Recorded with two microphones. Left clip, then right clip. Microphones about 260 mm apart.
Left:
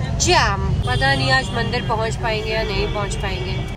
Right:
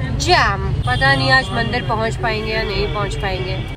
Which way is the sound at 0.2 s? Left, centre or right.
Centre.